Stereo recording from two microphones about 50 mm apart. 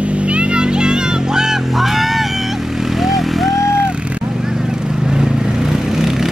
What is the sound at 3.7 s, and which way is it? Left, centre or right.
Vehicle, centre.